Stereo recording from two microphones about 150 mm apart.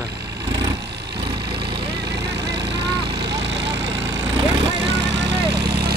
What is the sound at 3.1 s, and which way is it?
Vehicle, 25° right (ahead or behind).